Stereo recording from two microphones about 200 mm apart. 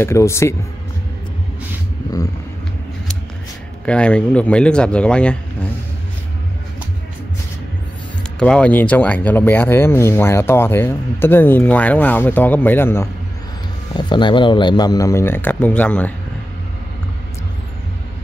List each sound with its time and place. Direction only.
0.0 s speech: 15° left (ahead or behind)
3.8 s speech: 5° left (ahead or behind)
8.4 s speech: 5° left (ahead or behind)
13.9 s speech: 25° left (ahead or behind); by 16.1 s 5° left (ahead or behind)